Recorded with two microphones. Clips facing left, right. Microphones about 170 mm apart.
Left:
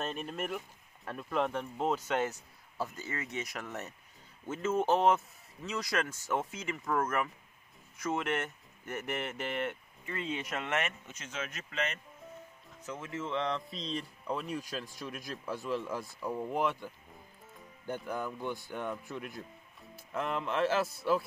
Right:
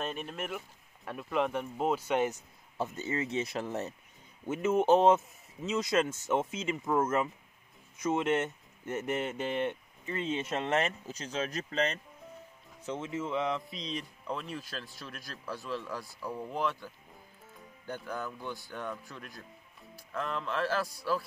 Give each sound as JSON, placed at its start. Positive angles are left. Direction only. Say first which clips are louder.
{"t": 0.0, "sound": "speech", "louder": "even", "side_deg": 0}
{"t": 2.8, "sound": "speech", "louder": "right 5 dB", "side_deg": -25}
{"t": 4.5, "sound": "speech", "louder": "right 4 dB", "side_deg": -15}
{"t": 12.8, "sound": "speech", "louder": "right 4 dB", "side_deg": -25}
{"t": 15.0, "sound": "speech", "louder": "left 4 dB", "side_deg": 20}
{"t": 18.0, "sound": "speech", "louder": "left 2 dB", "side_deg": 20}